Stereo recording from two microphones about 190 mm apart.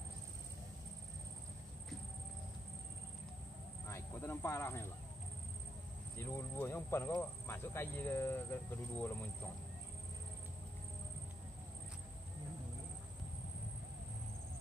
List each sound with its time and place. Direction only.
3.8 s snake: 15° left (ahead or behind)
6.1 s speech: 15° left (ahead or behind)